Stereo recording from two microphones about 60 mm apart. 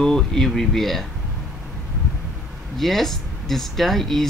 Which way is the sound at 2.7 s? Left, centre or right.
Centre.